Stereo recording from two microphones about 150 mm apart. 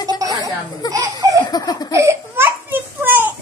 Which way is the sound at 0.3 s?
25° left (ahead or behind).